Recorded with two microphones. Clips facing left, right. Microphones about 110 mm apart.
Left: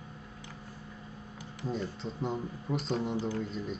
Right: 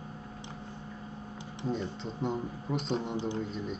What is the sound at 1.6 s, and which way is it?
Speech, centre (ahead or behind).